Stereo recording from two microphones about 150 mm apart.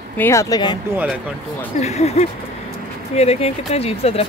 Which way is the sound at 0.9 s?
10° right (ahead or behind).